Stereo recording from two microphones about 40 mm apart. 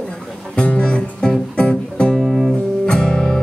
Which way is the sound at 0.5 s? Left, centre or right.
Left.